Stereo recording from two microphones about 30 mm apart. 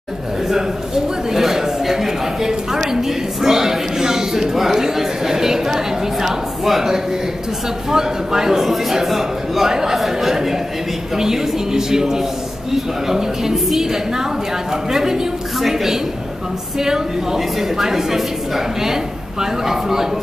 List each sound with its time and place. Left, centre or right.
0.5 s a sound: centre
4.7 s chatter: centre
6.2 s a sound: centre
7.9 s a man's voice: centre
9.7 s a man's voice: centre
9.9 s a man's voice: centre
19.7 s a man's voice: centre